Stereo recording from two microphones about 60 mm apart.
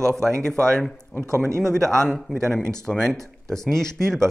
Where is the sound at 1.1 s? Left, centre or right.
Right.